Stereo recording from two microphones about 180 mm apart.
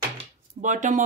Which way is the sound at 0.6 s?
45° right (ahead or behind).